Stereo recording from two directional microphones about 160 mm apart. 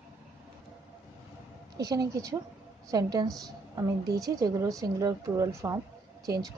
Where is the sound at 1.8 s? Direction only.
25° right (ahead or behind).